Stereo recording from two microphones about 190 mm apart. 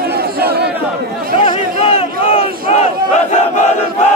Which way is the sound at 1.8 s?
30° left (ahead or behind).